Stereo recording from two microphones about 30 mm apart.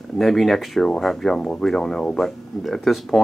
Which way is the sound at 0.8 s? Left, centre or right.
Centre.